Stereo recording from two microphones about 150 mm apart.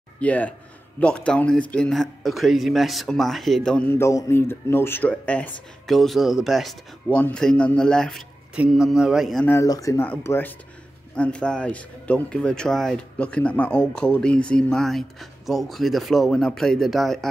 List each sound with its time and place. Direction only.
0.2 s a man's voice: 10° left (ahead or behind)
3.9 s a man's voice: 20° left (ahead or behind); by 9.5 s centre (ahead or behind)
9.5 s a man's voice: 20° left (ahead or behind); by 17.3 s centre (ahead or behind)